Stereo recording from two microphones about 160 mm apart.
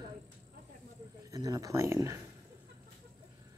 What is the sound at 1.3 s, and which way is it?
Speech, 20° right (ahead or behind).